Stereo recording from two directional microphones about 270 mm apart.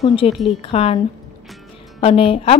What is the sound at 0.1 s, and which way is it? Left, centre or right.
A woman's voice, centre.